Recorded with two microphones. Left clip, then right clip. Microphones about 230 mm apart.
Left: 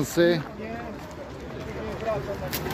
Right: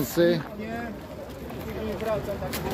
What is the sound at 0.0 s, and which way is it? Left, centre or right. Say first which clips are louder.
Speech: left 1 dB; centre.